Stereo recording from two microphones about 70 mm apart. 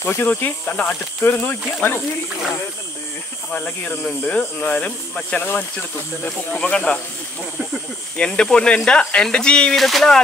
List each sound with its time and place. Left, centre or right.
0.0 s speech: left
3.5 s speech: left
5.4 s speech: left
6.5 s speech: centre
8.2 s speech: centre